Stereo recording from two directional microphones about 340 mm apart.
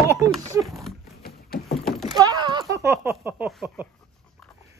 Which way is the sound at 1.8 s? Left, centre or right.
Centre.